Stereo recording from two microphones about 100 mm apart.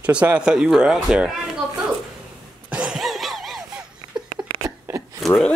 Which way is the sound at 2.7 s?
10° right (ahead or behind).